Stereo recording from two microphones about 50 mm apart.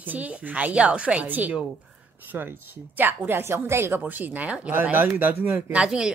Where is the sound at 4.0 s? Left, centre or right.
Right.